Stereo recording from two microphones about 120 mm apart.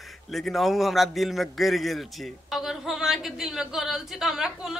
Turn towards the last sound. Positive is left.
turn(degrees=-5)  # may be behind; listen again after turning